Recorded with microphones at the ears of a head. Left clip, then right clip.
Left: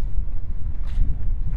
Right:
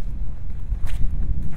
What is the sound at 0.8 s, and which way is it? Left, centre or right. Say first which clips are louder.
Walk: right 3 dB; right.